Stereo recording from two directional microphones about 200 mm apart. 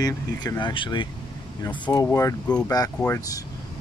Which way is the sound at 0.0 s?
20° left (ahead or behind).